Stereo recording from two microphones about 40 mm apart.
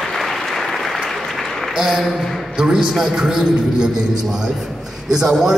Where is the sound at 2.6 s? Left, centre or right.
Centre.